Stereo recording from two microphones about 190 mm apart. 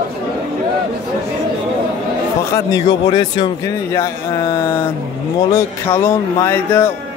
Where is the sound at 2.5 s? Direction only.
20° left (ahead or behind).